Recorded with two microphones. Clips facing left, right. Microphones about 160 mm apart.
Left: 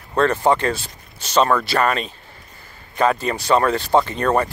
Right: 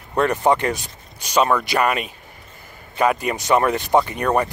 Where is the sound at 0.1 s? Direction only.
15° right (ahead or behind).